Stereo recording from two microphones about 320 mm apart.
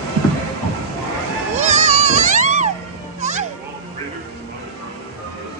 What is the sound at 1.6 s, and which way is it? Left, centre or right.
Music, right.